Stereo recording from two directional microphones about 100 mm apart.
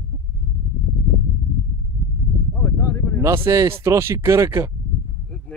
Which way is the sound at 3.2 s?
30° right (ahead or behind).